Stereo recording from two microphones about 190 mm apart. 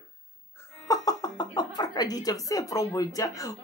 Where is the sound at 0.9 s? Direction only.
20° left (ahead or behind).